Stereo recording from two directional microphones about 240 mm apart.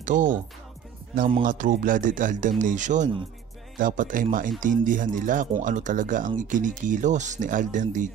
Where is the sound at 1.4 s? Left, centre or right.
Right.